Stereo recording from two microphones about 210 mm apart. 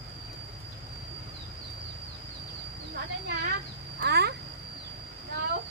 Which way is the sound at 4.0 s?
50° right (ahead or behind).